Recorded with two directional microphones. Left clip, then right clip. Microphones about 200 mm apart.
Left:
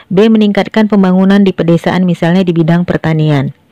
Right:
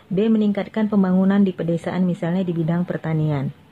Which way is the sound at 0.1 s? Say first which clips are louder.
Left 12 dB; 40° left (ahead or behind).